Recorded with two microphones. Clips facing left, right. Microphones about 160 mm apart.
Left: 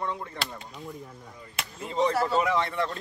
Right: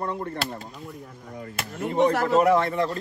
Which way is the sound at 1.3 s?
65° right (ahead or behind).